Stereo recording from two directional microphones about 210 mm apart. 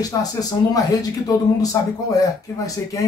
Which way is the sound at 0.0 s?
15° left (ahead or behind).